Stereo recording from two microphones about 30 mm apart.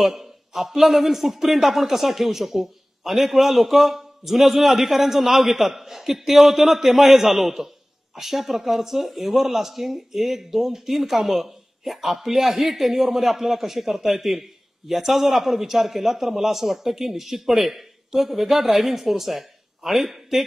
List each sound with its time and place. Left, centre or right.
0.0 s speech: centre